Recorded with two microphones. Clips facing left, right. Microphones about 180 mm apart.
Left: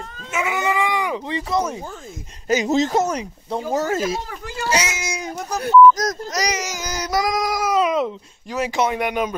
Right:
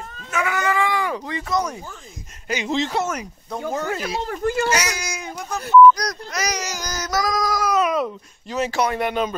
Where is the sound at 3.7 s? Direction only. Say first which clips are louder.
Left 5 dB; 40° left (ahead or behind).